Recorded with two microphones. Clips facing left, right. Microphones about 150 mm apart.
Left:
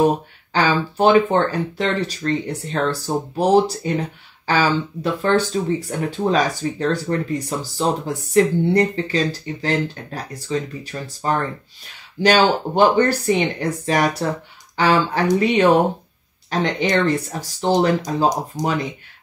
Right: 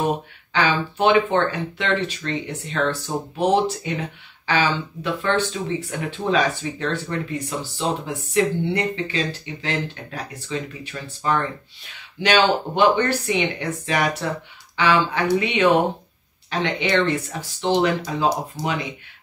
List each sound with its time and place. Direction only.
0.0 s speech: 40° left (ahead or behind)